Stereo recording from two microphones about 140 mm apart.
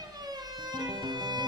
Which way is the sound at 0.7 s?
30° right (ahead or behind).